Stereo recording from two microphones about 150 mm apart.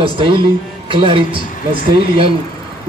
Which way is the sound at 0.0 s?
35° right (ahead or behind).